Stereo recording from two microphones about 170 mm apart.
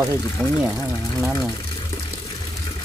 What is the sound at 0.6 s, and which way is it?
Speech, 5° right (ahead or behind).